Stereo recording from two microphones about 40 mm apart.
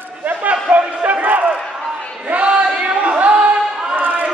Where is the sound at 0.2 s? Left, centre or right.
Right.